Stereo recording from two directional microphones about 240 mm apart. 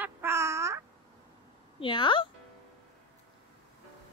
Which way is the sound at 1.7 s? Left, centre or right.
Left.